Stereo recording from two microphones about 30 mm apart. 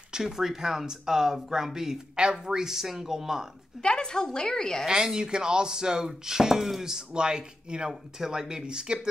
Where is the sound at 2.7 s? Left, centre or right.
Centre.